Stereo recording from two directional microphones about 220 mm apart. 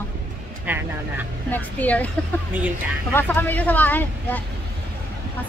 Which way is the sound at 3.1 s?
10° left (ahead or behind).